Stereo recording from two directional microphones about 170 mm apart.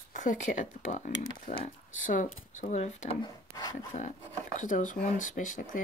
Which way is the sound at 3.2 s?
25° left (ahead or behind).